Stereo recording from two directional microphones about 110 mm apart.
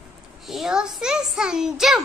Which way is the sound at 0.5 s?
5° right (ahead or behind).